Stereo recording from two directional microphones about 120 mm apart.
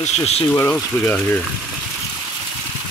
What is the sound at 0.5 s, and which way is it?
Speech, 15° left (ahead or behind).